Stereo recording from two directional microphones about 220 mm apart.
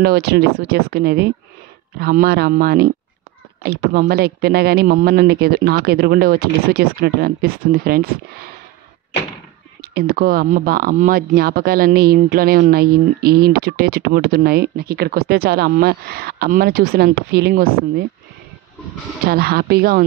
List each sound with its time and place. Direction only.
0.0 s speech: 45° right (ahead or behind)
9.9 s speech: 45° right (ahead or behind)
19.2 s speech: 45° right (ahead or behind)